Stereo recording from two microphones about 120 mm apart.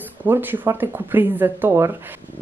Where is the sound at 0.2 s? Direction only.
15° right (ahead or behind).